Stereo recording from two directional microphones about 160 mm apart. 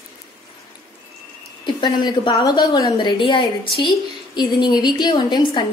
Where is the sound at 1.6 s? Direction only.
25° left (ahead or behind).